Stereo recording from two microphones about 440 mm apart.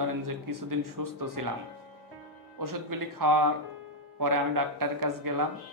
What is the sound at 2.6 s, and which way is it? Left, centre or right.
A man's voice, right.